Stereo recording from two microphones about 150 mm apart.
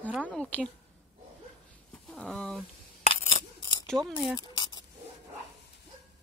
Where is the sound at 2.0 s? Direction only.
5° left (ahead or behind).